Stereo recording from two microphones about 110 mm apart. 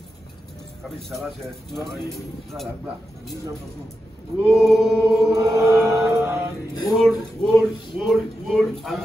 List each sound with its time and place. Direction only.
0.8 s speech: centre (ahead or behind)
4.4 s choir: 15° right (ahead or behind)
4.6 s speech: 5° right (ahead or behind)
5.3 s mantra: 30° right (ahead or behind)
7.0 s a sound: centre (ahead or behind)